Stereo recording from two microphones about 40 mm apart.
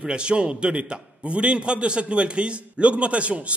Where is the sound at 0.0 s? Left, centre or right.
Right.